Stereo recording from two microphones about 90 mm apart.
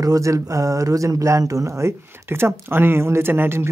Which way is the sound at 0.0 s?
40° right (ahead or behind).